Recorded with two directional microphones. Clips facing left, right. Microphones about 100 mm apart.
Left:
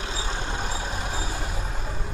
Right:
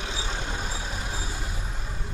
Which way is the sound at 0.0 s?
35° left (ahead or behind).